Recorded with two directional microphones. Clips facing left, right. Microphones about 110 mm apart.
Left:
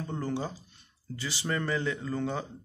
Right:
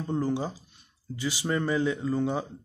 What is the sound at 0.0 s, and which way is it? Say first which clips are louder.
Speech: right 5 dB; 15° right (ahead or behind).